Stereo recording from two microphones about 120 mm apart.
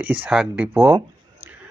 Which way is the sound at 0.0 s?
15° right (ahead or behind).